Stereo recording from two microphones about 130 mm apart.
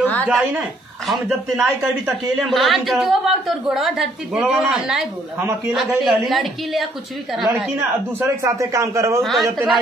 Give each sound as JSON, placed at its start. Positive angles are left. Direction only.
{"t": 0.0, "sound": "a sound", "side_deg": 10}
{"t": 0.4, "sound": "a woman's voice", "side_deg": 0}
{"t": 8.5, "sound": "a man's voice", "side_deg": -25}
{"t": 9.2, "sound": "a woman's voice", "side_deg": 0}